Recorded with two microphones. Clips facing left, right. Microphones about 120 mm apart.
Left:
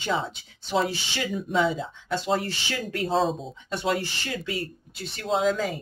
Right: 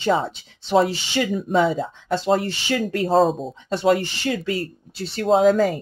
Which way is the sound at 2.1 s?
30° right (ahead or behind).